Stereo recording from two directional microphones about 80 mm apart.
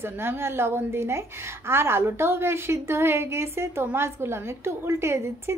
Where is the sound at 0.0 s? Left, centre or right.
Right.